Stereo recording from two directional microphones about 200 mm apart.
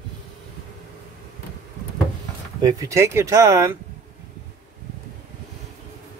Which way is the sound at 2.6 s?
15° right (ahead or behind).